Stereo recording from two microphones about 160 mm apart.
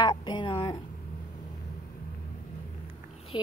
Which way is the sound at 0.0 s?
25° left (ahead or behind).